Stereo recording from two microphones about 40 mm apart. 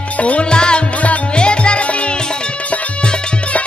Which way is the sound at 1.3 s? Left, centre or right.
Left.